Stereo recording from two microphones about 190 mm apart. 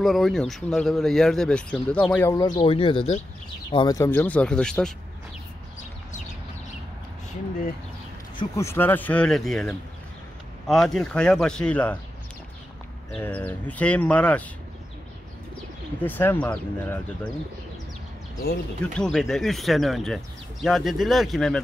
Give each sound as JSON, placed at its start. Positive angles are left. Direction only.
{"t": 0.0, "sound": "speech", "side_deg": 0}
{"t": 2.3, "sound": "speech", "side_deg": 20}
{"t": 8.4, "sound": "speech", "side_deg": 15}
{"t": 13.1, "sound": "speech", "side_deg": 5}
{"t": 16.0, "sound": "speech", "side_deg": 10}
{"t": 18.9, "sound": "speech", "side_deg": 0}